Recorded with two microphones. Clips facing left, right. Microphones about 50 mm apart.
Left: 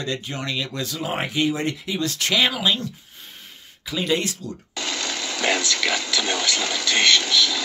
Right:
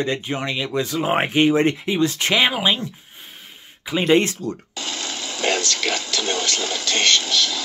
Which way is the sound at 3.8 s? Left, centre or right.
Right.